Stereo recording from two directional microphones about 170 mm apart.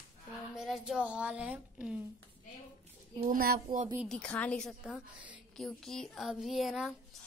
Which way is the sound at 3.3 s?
60° right (ahead or behind).